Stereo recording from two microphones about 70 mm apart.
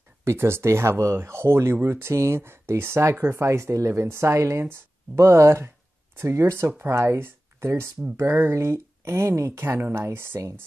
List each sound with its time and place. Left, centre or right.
0.2 s speech: right